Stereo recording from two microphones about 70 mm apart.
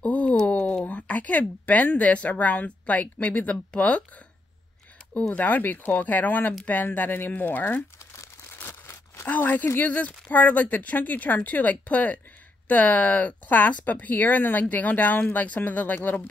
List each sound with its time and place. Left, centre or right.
0.0 s speech: centre
5.3 s speech: left
8.8 s a sound: left
9.3 s speech: left